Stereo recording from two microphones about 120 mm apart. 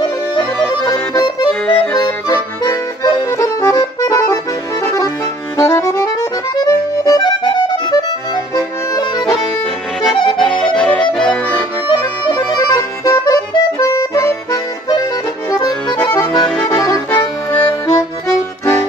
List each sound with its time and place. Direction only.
0.0 s music: 40° left (ahead or behind)
1.1 s accordion: 40° left (ahead or behind)
1.5 s accordion: 10° left (ahead or behind)
2.0 s accordion: 35° left (ahead or behind)
5.6 s music: 25° left (ahead or behind)
10.3 s accordion: 5° left (ahead or behind)
12.3 s music: 40° left (ahead or behind)
15.5 s accordion: 35° left (ahead or behind)
16.0 s accordion: 20° left (ahead or behind)
16.3 s accordion: 5° left (ahead or behind)
16.6 s accordion: 30° left (ahead or behind)
17.9 s music: 20° left (ahead or behind)